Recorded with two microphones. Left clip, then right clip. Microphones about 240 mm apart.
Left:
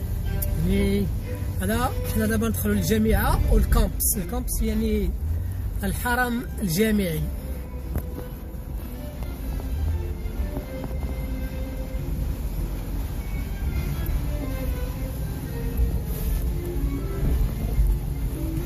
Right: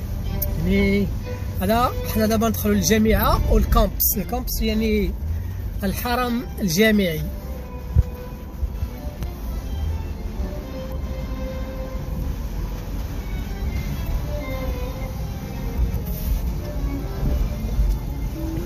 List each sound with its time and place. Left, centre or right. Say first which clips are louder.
0.7 s speech: right 5 dB; centre
4.3 s a woman's voice: right 8 dB; centre
5.8 s speech: right 1 dB; centre